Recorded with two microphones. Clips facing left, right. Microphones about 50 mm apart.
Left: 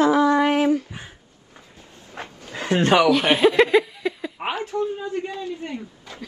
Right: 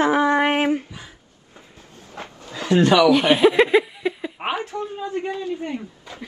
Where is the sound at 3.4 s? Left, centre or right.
Centre.